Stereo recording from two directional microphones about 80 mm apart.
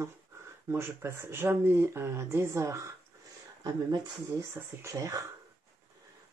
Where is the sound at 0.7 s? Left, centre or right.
Right.